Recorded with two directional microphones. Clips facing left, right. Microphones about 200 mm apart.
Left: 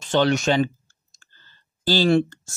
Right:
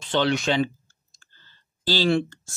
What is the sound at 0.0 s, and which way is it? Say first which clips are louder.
Speech: left 3 dB; 45° left (ahead or behind).